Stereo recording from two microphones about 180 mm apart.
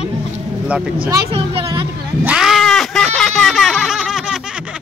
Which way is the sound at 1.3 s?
30° right (ahead or behind).